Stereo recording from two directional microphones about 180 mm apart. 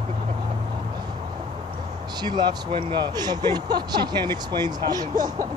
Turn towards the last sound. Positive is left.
turn(degrees=-20)  # may be behind; listen again after turning